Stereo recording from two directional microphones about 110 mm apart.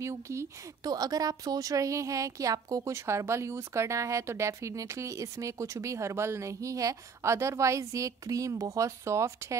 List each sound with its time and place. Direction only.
0.0 s a woman's voice: 25° right (ahead or behind)